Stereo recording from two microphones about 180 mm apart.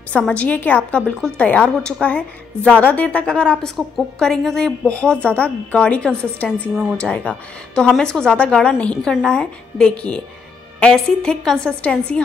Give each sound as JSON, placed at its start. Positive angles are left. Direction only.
{"t": 0.1, "sound": "a woman's voice", "side_deg": 5}
{"t": 6.8, "sound": "a woman's voice", "side_deg": -5}